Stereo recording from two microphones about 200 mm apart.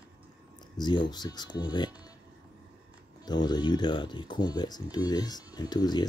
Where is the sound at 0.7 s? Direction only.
20° left (ahead or behind).